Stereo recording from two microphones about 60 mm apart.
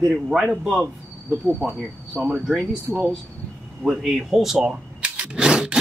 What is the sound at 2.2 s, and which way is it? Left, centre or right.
Speech, centre.